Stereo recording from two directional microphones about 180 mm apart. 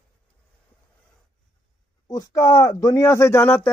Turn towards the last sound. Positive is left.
turn(degrees=10)  # may be behind; listen again after turning